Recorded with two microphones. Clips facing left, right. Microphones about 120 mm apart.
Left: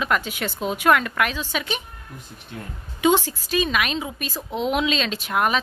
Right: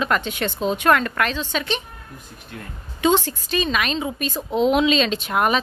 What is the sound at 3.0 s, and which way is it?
Speech, 10° left (ahead or behind).